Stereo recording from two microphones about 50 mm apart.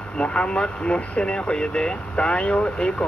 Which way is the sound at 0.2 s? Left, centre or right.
Left.